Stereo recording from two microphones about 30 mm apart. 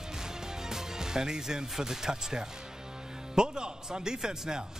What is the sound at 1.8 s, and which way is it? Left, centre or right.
Speech, centre.